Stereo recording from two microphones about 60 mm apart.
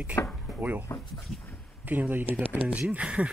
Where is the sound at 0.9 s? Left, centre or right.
Left.